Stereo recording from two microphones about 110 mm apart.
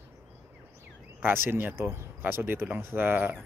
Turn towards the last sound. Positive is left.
turn(degrees=-15)  # may be behind; listen again after turning